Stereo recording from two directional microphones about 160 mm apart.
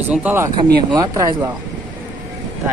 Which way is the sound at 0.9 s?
25° right (ahead or behind).